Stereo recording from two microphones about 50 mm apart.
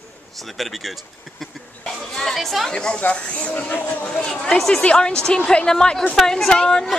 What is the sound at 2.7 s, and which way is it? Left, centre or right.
Speech, centre.